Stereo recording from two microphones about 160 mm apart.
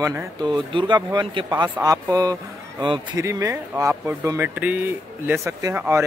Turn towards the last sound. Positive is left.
turn(degrees=-15)  # may be behind; listen again after turning